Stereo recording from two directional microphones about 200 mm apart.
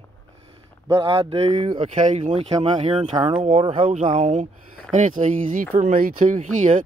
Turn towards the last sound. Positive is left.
turn(degrees=-40)  # may be behind; listen again after turning